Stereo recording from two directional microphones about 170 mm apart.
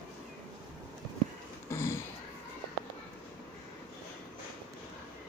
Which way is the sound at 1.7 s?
15° left (ahead or behind).